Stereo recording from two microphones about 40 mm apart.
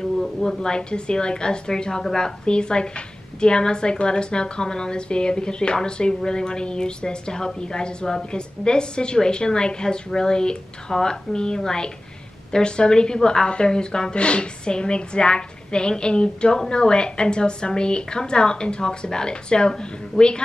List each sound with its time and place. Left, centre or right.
0.2 s a woman's voice: centre